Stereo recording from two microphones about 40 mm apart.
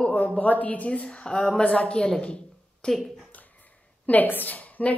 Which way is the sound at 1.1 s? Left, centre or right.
Left.